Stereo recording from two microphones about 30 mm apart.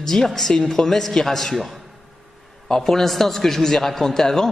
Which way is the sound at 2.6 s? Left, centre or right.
Centre.